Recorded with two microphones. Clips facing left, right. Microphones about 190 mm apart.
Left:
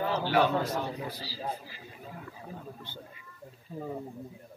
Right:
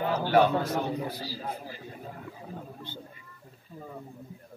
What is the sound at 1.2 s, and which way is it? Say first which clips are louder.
Speech: right 1 dB; 50° right (ahead or behind).